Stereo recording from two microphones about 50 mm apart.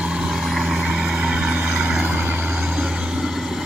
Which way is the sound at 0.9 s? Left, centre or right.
Centre.